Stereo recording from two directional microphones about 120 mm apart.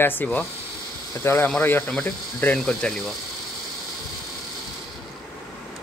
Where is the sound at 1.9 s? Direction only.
5° left (ahead or behind).